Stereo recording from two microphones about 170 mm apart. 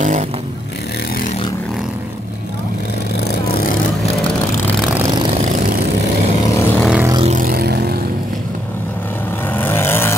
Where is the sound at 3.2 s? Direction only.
60° left (ahead or behind).